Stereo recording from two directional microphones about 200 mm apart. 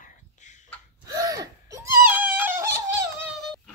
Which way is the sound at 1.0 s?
20° right (ahead or behind).